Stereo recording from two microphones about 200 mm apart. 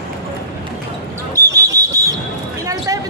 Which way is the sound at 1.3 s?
15° right (ahead or behind).